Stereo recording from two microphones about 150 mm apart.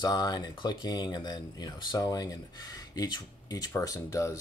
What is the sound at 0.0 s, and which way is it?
Speech, 25° left (ahead or behind).